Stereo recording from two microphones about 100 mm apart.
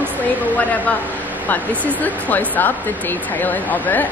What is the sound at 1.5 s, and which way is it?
Speech, 15° left (ahead or behind).